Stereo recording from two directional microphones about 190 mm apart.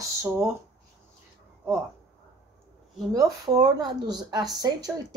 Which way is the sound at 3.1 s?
20° right (ahead or behind).